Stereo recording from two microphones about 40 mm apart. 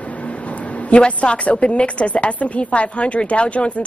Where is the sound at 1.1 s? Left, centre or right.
Left.